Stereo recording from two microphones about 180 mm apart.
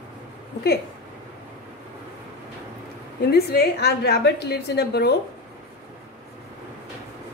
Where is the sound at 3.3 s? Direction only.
60° left (ahead or behind).